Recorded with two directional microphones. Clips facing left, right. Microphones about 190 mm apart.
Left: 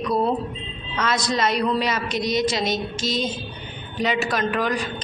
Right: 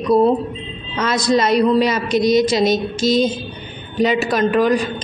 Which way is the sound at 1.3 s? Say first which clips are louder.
Right 10 dB; 35° right (ahead or behind).